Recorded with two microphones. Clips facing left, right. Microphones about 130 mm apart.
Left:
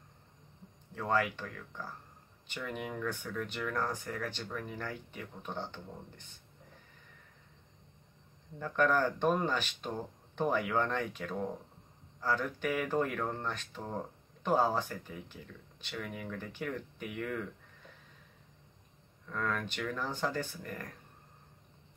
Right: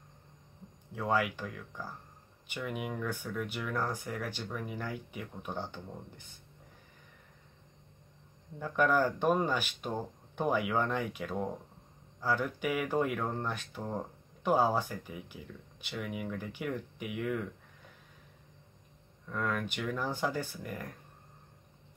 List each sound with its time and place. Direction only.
0.9 s speech: 10° right (ahead or behind)
8.5 s speech: 10° right (ahead or behind)
19.2 s speech: 10° right (ahead or behind)